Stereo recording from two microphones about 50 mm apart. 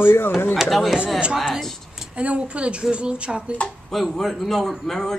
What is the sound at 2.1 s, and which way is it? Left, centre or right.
Speech, right.